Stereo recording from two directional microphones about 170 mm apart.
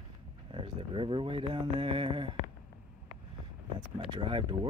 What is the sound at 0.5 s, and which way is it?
Speech, 30° right (ahead or behind).